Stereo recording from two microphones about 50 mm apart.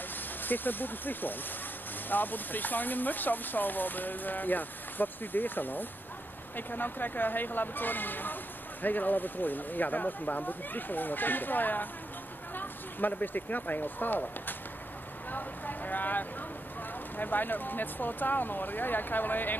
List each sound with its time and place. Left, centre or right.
0.4 s speech: left
15.3 s boat: left
17.2 s speech: left